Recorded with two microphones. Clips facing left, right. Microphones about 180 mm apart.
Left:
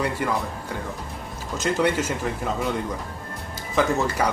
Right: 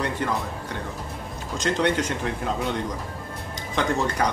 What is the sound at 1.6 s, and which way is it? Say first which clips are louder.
Speech: left 1 dB; 5° left (ahead or behind).